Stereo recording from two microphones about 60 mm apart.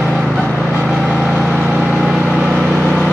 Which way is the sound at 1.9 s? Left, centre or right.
Centre.